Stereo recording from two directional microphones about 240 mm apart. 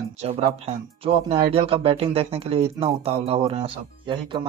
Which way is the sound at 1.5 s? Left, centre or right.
Right.